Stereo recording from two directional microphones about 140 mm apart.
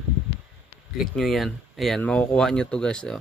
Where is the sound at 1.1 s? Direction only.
Centre (ahead or behind).